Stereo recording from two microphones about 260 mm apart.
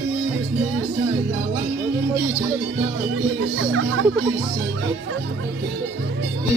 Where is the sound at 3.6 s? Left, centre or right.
Right.